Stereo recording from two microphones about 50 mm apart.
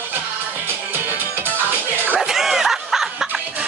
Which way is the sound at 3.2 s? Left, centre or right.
Right.